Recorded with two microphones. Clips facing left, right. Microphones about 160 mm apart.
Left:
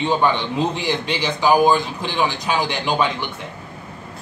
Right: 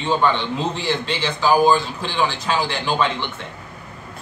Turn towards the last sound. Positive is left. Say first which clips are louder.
# left 1 dB
turn(degrees=15)  # may be behind; listen again after turning